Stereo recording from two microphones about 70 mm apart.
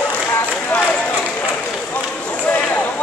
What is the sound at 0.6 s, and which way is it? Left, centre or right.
Run, left.